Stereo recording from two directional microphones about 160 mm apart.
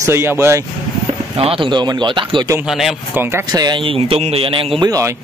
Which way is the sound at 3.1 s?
15° right (ahead or behind).